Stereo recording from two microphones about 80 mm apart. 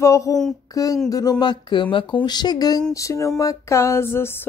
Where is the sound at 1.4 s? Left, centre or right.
Left.